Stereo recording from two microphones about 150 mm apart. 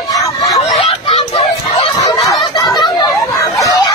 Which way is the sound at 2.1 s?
Centre (ahead or behind).